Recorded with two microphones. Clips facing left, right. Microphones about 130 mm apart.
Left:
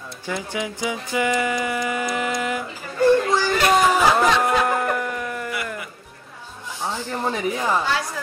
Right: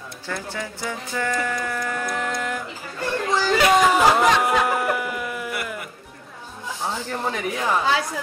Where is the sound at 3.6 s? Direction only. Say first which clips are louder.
Even; 10° right (ahead or behind).